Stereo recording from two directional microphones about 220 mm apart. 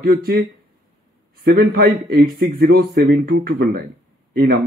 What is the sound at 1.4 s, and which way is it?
Speech, 45° right (ahead or behind).